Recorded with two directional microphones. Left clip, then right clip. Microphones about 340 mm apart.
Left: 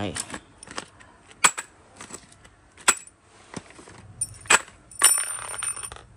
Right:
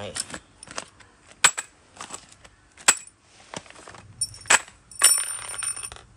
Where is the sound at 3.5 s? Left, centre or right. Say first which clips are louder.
Right 3 dB; centre.